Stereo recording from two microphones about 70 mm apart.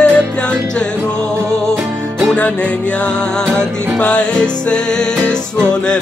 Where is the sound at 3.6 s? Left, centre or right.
Centre.